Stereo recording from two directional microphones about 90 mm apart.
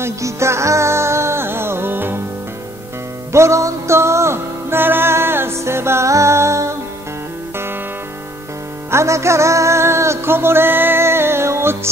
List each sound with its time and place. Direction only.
0.0 s music: 30° right (ahead or behind)
3.3 s music: 35° right (ahead or behind)
8.9 s music: 35° right (ahead or behind)